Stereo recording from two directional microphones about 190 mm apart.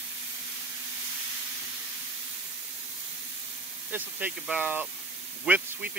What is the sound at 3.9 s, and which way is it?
Speech, 10° right (ahead or behind).